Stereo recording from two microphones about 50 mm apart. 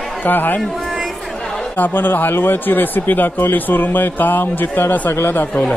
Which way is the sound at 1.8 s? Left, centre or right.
Left.